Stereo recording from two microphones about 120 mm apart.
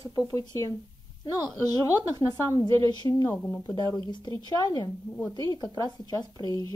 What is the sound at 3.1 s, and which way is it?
Speech, 20° left (ahead or behind).